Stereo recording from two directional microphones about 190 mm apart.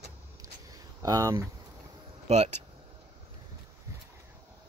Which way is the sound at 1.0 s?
20° right (ahead or behind).